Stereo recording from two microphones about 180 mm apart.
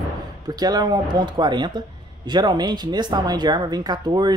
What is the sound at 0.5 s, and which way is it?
A man's voice, 20° right (ahead or behind).